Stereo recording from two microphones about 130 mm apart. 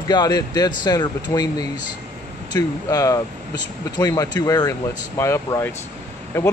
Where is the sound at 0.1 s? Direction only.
30° left (ahead or behind).